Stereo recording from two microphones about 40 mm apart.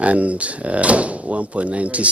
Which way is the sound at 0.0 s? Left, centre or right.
Right.